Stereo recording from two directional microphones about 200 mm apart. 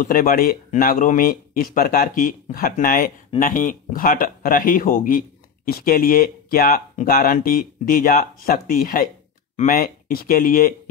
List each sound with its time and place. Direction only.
0.0 s speech: 45° left (ahead or behind)